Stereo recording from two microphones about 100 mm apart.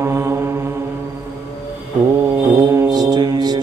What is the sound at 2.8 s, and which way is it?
Mantra, 45° right (ahead or behind).